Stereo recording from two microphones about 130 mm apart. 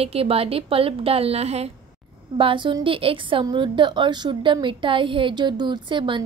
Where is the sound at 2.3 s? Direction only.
40° right (ahead or behind).